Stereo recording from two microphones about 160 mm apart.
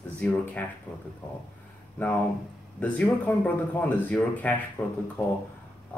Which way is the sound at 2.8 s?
10° left (ahead or behind).